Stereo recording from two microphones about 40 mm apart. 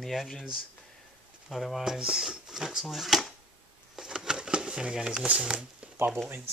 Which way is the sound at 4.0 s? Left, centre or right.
Centre.